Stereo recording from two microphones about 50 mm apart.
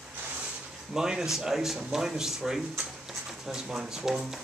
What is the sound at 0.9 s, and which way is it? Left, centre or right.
Speech, centre.